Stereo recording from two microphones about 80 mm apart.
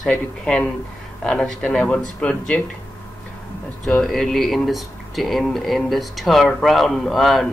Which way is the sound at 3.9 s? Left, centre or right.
Centre.